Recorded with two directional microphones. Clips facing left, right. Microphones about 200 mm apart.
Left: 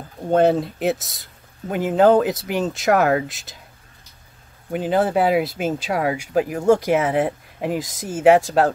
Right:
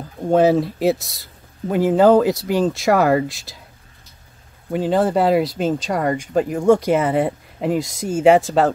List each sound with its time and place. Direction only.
0.3 s speech: centre (ahead or behind)
4.7 s speech: 5° left (ahead or behind)